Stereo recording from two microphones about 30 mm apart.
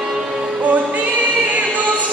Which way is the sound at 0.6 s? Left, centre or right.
Right.